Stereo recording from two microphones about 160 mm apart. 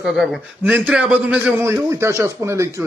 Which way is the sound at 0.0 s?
Centre (ahead or behind).